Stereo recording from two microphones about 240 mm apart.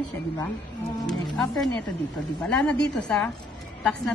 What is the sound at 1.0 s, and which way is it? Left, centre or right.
Speech, centre.